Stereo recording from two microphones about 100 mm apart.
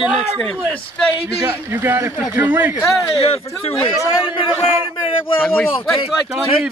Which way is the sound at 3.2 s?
75° left (ahead or behind).